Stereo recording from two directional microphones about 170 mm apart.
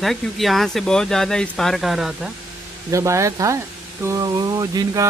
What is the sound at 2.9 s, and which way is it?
Speech, 15° right (ahead or behind).